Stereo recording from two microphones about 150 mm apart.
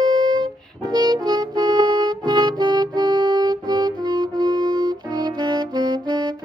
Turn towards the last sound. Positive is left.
turn(degrees=-30)  # may be behind; listen again after turning